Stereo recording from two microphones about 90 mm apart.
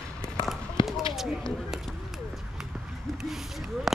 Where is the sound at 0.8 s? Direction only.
65° left (ahead or behind).